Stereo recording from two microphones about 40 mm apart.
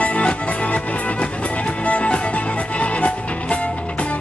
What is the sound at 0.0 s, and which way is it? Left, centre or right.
Music, left.